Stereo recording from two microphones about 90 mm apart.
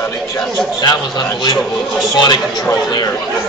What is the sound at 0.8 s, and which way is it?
A man's voice, 50° left (ahead or behind).